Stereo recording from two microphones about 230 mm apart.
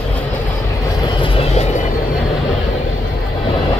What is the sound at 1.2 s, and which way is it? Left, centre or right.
Vehicle, left.